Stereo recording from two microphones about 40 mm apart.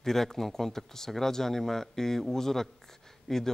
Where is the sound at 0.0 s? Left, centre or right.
Centre.